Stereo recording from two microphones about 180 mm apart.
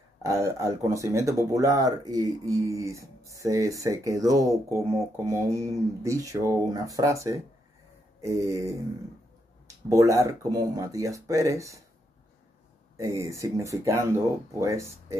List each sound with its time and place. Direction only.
0.2 s speech: 15° right (ahead or behind)
9.8 s speech: 20° right (ahead or behind)
12.9 s speech: 15° right (ahead or behind)